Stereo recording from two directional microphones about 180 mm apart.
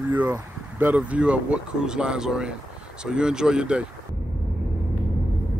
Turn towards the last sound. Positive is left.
turn(degrees=-5)  # may be behind; listen again after turning